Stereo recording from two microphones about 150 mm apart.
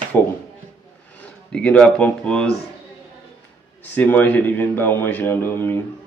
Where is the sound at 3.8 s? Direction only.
10° left (ahead or behind).